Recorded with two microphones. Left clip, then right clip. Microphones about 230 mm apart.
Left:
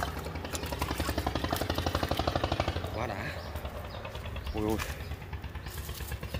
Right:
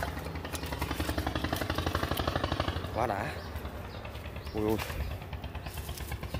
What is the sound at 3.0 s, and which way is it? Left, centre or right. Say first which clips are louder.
Speech: right 6 dB; centre.